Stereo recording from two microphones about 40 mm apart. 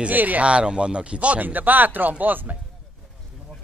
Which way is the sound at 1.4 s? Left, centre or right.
Right.